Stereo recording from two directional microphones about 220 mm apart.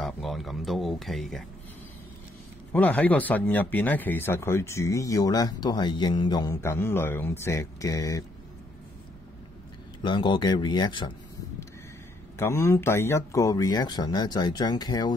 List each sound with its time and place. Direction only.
0.0 s speech: centre (ahead or behind)
2.7 s speech: 5° left (ahead or behind)
10.0 s speech: 20° left (ahead or behind)
12.4 s speech: 10° left (ahead or behind)